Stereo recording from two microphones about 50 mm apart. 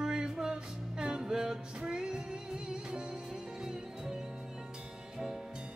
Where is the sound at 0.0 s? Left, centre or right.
Centre.